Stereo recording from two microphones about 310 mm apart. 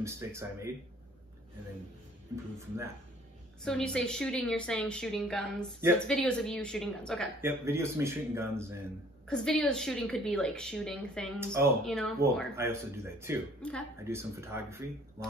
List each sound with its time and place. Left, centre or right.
0.0 s speech: centre
3.6 s a woman's voice: centre
7.4 s speech: centre
9.3 s a woman's voice: centre
13.6 s a woman's voice: centre
14.0 s speech: centre